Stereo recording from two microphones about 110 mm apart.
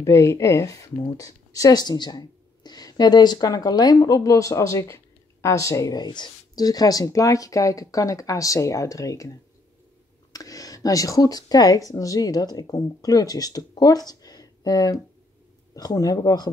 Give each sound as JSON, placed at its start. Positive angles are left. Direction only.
{"t": 0.0, "sound": "speech", "side_deg": 25}
{"t": 10.3, "sound": "speech", "side_deg": 30}